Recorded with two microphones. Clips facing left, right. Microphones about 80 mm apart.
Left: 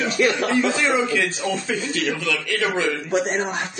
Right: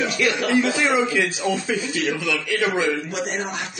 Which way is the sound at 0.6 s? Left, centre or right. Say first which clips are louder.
Even; centre.